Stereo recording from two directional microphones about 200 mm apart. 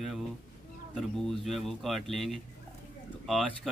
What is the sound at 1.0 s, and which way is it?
Speech, centre (ahead or behind).